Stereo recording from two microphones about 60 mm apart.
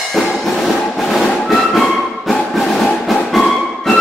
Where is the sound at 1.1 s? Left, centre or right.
Centre.